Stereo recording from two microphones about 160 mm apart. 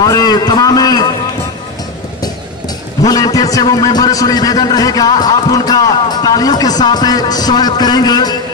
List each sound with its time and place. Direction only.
0.0 s a man's voice: 25° left (ahead or behind)
3.0 s a man's voice: 25° left (ahead or behind)